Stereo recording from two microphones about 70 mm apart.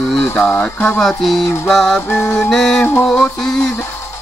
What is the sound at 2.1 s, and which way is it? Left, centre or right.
Speech, left.